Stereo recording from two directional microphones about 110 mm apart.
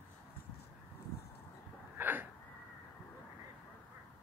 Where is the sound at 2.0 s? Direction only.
15° right (ahead or behind).